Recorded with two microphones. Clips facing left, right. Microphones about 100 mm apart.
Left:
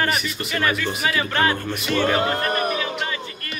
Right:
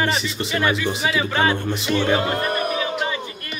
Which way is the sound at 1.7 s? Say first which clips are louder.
Right 1 dB; 25° right (ahead or behind).